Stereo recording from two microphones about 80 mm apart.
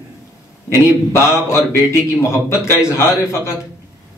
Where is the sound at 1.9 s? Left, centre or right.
Left.